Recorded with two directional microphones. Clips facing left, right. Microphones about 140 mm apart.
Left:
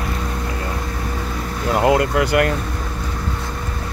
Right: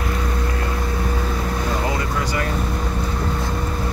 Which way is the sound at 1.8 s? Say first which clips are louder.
Left 7 dB; 70° left (ahead or behind).